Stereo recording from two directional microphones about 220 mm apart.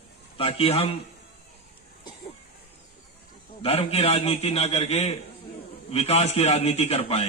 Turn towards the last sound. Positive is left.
turn(degrees=30)  # may be behind; listen again after turning